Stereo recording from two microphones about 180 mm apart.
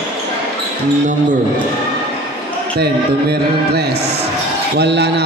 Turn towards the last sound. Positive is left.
turn(degrees=-70)  # may be behind; listen again after turning